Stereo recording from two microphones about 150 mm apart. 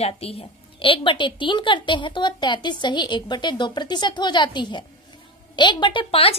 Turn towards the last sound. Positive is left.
turn(degrees=40)  # may be behind; listen again after turning